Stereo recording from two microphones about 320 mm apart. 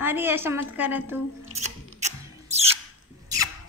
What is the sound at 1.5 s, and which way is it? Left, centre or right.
Rub, right.